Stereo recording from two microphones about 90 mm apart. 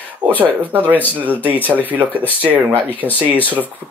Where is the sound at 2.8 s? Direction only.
20° left (ahead or behind).